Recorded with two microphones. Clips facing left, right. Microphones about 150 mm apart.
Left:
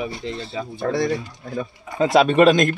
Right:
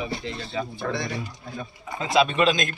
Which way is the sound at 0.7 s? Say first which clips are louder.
Left 12 dB; 40° left (ahead or behind).